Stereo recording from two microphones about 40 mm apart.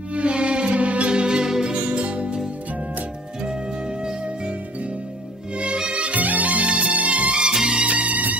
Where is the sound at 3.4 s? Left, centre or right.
Right.